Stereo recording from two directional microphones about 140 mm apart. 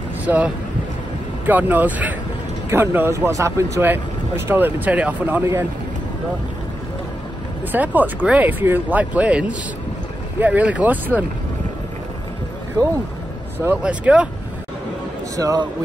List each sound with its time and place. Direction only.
0.2 s speech: 10° right (ahead or behind)
7.7 s speech: 10° right (ahead or behind)
13.6 s speech: 10° right (ahead or behind)
15.3 s a man's voice: 25° right (ahead or behind)